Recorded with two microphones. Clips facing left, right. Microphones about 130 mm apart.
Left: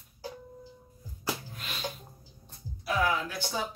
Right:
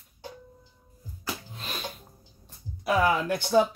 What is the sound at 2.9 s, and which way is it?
Speech, 60° right (ahead or behind).